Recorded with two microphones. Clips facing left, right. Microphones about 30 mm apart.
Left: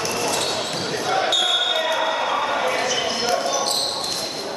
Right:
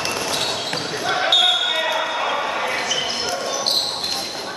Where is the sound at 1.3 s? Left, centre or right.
Right.